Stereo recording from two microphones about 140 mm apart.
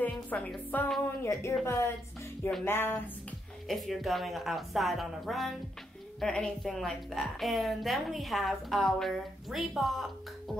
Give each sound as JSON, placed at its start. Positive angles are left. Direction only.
{"t": 0.0, "sound": "music", "side_deg": 10}
{"t": 0.7, "sound": "speech", "side_deg": 10}
{"t": 3.6, "sound": "a woman's voice", "side_deg": 0}